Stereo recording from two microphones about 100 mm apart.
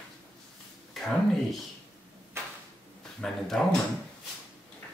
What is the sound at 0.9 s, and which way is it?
Speech, centre (ahead or behind).